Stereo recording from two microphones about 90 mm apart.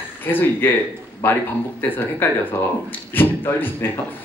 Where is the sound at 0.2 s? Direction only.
20° left (ahead or behind).